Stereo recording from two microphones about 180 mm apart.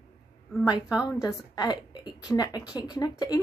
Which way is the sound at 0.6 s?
20° left (ahead or behind).